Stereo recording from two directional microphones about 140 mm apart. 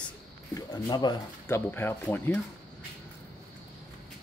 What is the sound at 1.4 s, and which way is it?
Speech, 15° left (ahead or behind).